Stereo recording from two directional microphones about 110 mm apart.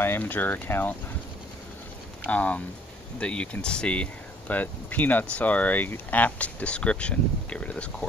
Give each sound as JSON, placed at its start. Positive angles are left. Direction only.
{"t": 0.0, "sound": "speech", "side_deg": 20}
{"t": 2.2, "sound": "speech", "side_deg": 10}